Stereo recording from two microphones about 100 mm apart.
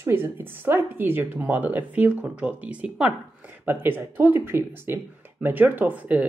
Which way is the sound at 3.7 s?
20° right (ahead or behind).